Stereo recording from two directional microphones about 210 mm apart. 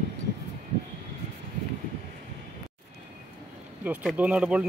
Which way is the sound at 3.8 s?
5° right (ahead or behind).